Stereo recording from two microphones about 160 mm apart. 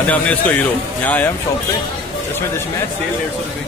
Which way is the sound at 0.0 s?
10° left (ahead or behind).